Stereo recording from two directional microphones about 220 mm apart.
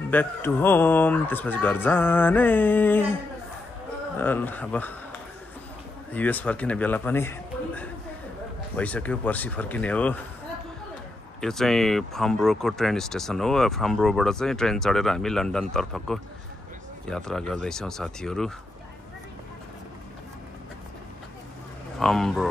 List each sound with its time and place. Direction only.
0.1 s speech: 10° left (ahead or behind)
4.2 s speech: 10° left (ahead or behind)
6.1 s speech: 5° left (ahead or behind)
11.4 s speech: centre (ahead or behind)
22.0 s speech: centre (ahead or behind)